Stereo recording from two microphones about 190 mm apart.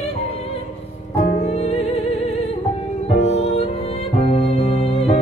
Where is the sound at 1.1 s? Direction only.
35° left (ahead or behind).